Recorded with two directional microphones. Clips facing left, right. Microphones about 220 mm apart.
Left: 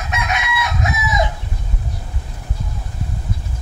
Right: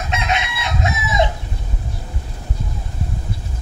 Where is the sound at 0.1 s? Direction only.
25° right (ahead or behind).